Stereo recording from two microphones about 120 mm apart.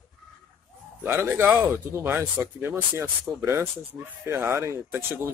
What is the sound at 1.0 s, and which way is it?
Speech, 20° right (ahead or behind).